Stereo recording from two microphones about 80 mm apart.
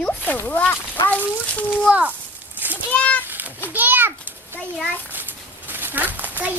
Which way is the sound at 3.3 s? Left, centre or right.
Right.